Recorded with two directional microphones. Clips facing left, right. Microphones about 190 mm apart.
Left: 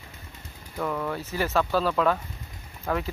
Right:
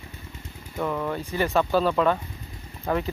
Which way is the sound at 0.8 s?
5° right (ahead or behind).